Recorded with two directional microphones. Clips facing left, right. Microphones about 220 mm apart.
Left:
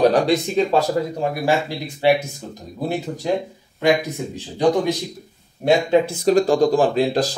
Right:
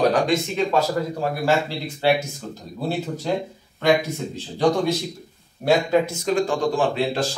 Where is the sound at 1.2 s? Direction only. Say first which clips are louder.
Left 1 dB; 15° left (ahead or behind).